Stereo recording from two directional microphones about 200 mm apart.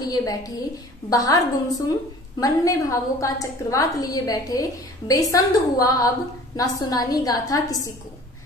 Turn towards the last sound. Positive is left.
turn(degrees=15)  # may be behind; listen again after turning